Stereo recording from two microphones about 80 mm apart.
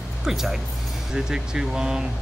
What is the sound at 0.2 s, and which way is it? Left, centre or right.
Speech, centre.